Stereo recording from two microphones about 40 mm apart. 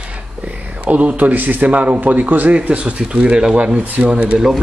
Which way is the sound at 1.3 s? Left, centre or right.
Right.